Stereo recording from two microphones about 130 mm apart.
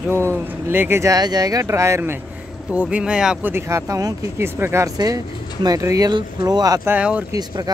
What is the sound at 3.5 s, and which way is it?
Speech, 20° right (ahead or behind).